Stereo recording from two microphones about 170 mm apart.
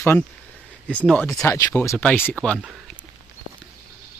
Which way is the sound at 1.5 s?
15° left (ahead or behind).